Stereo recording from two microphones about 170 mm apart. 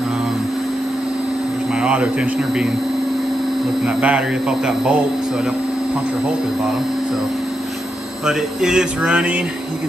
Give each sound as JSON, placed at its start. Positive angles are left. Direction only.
{"t": 1.8, "sound": "speech", "side_deg": -5}
{"t": 3.8, "sound": "speech", "side_deg": -5}
{"t": 8.3, "sound": "speech", "side_deg": -5}